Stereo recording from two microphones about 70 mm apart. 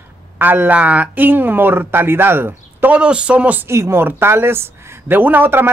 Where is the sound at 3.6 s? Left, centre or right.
Right.